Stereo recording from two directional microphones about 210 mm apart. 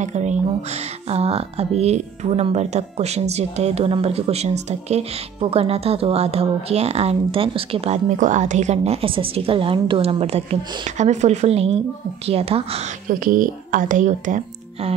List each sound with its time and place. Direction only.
0.0 s speech: 35° right (ahead or behind)
13.2 s speech: 40° right (ahead or behind)